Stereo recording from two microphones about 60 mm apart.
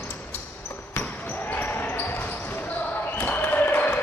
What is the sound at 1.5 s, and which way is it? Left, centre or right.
Basketball bounce, left.